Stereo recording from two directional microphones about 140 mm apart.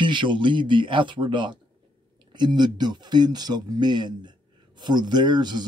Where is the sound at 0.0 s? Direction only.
35° right (ahead or behind).